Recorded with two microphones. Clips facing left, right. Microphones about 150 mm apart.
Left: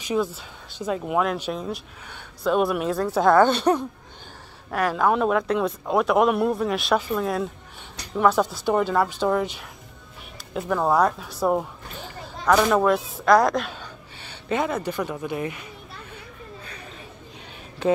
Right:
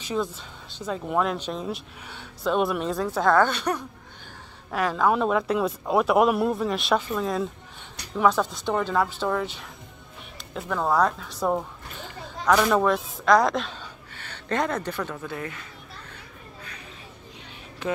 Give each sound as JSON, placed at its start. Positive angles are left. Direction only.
{"t": 0.0, "sound": "a woman's voice", "side_deg": 15}
{"t": 3.4, "sound": "speech", "side_deg": 25}
{"t": 4.6, "sound": "a woman's voice", "side_deg": 0}